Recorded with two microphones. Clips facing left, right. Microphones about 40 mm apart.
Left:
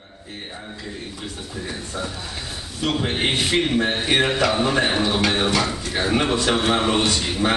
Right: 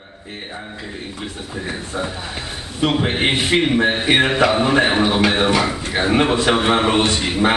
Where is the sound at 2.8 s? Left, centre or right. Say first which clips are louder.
Right 4 dB; right.